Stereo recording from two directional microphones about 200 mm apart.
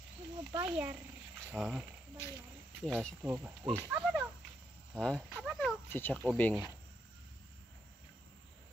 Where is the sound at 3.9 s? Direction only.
5° right (ahead or behind).